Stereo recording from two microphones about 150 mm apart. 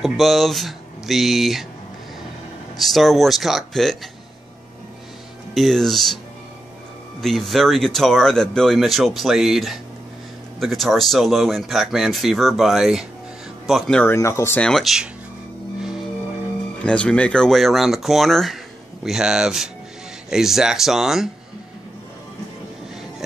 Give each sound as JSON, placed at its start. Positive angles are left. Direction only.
{"t": 0.0, "sound": "speech", "side_deg": 0}
{"t": 2.8, "sound": "speech", "side_deg": 0}
{"t": 5.5, "sound": "speech", "side_deg": 0}
{"t": 7.2, "sound": "speech", "side_deg": 0}
{"t": 14.1, "sound": "speech", "side_deg": 20}
{"t": 14.6, "sound": "speech", "side_deg": 0}
{"t": 16.8, "sound": "speech", "side_deg": 5}